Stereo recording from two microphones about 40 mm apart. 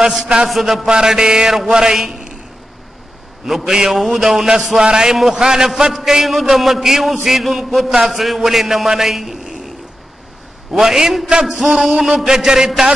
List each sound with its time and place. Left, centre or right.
0.5 s a man's voice: centre
0.8 s a man's voice: centre
3.4 s a man's voice: centre
10.7 s a man's voice: centre